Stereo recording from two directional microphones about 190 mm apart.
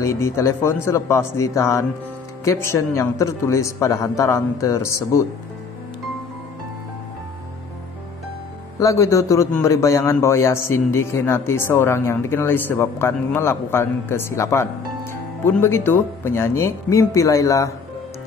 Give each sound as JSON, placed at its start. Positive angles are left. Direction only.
{"t": 0.0, "sound": "a man's voice", "side_deg": 15}
{"t": 8.7, "sound": "a man's voice", "side_deg": 15}